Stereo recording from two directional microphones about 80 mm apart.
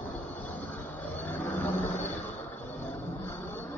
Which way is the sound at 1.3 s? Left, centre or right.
Left.